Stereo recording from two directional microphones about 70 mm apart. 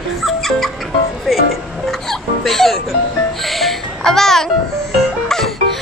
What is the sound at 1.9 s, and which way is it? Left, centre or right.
Music, centre.